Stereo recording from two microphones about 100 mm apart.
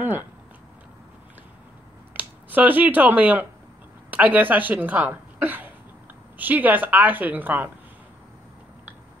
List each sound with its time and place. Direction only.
2.1 s a woman's voice: 15° right (ahead or behind)